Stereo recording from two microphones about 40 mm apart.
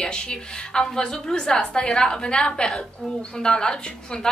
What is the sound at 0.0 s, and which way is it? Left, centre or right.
A woman's voice, left.